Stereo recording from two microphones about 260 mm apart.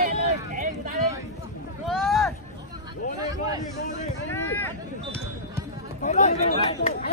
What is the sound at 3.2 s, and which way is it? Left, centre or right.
Speech, centre.